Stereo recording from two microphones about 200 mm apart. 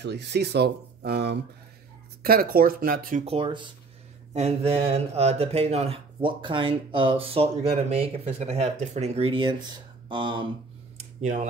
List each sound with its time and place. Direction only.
0.0 s speech: 55° right (ahead or behind)
3.3 s speech: 25° right (ahead or behind)
11.0 s a sound: 35° right (ahead or behind)